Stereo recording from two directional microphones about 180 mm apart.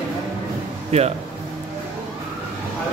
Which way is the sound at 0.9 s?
35° right (ahead or behind).